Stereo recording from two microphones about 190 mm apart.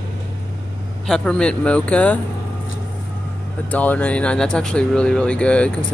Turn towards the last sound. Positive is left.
turn(degrees=5)  # may be behind; listen again after turning